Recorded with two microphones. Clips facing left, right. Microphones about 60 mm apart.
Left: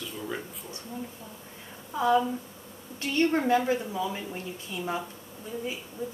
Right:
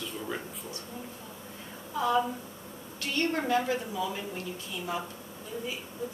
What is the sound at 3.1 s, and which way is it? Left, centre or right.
Speech, centre.